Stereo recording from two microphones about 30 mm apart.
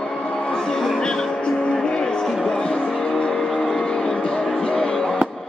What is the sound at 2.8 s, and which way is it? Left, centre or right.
Vehicle, centre.